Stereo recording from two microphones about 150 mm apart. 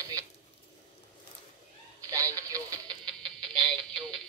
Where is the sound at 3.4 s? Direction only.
35° right (ahead or behind).